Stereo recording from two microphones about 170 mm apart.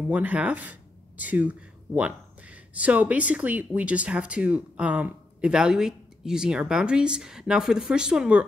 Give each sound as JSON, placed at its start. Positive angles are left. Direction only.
{"t": 0.1, "sound": "speech", "side_deg": -10}